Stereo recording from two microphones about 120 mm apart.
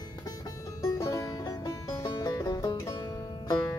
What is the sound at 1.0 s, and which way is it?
Music, 25° left (ahead or behind).